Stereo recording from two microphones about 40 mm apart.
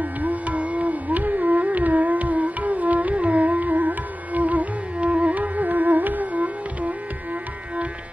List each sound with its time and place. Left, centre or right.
0.0 s music: right